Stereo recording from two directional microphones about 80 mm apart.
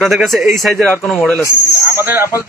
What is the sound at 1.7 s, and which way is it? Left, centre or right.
Speech, right.